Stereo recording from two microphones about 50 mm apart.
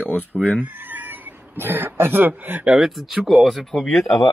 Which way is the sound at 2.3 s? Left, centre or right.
Right.